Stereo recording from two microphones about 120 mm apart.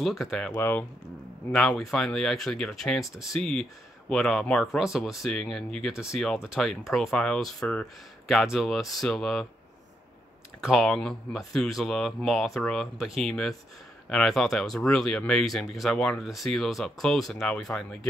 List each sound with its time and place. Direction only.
0.0 s speech: centre (ahead or behind)
0.6 s speech: 20° left (ahead or behind)
1.5 s speech: 5° left (ahead or behind)
8.3 s speech: centre (ahead or behind)
10.6 s speech: centre (ahead or behind)